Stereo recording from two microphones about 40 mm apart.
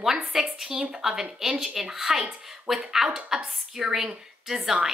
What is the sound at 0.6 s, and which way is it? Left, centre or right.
Speech, centre.